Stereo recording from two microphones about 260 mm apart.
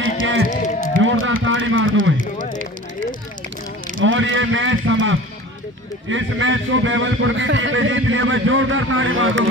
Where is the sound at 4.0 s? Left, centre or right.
Right.